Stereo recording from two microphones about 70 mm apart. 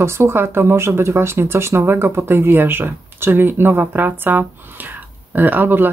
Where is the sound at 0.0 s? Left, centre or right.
Right.